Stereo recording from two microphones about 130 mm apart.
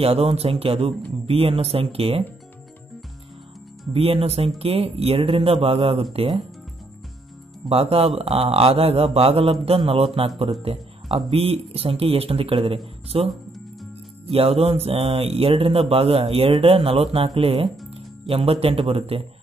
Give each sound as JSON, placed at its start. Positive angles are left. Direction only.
{"t": 0.0, "sound": "speech", "side_deg": -50}
{"t": 3.9, "sound": "speech", "side_deg": -45}
{"t": 7.7, "sound": "speech", "side_deg": -50}
{"t": 13.3, "sound": "music", "side_deg": 0}
{"t": 14.2, "sound": "speech", "side_deg": -50}